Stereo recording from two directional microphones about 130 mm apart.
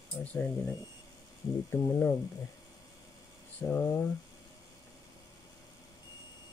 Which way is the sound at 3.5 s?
15° left (ahead or behind).